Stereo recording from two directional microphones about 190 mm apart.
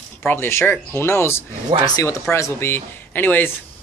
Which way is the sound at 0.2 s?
10° left (ahead or behind).